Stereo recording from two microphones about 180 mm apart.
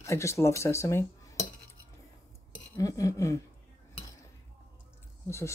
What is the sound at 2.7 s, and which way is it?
Speech, 20° left (ahead or behind).